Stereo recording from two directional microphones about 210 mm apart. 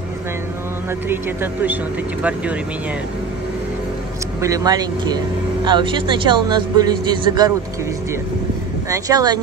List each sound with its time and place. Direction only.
1.0 s speech: 10° right (ahead or behind)
4.4 s speech: 15° right (ahead or behind)
8.8 s speech: 15° right (ahead or behind)